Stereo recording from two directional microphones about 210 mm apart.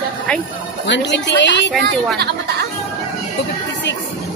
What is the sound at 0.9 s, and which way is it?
Speech, 55° left (ahead or behind).